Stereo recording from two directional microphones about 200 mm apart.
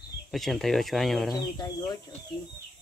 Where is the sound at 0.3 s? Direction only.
Centre (ahead or behind).